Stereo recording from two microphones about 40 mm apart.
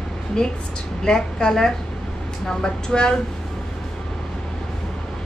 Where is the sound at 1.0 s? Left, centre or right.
Centre.